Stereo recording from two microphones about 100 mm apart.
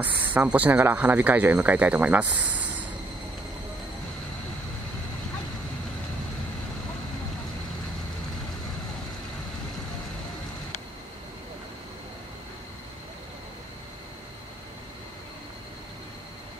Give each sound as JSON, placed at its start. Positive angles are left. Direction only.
{"t": 0.0, "sound": "speech", "side_deg": -15}